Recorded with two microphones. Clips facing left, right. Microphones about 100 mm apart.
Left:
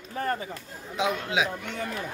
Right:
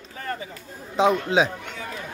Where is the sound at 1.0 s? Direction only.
35° right (ahead or behind).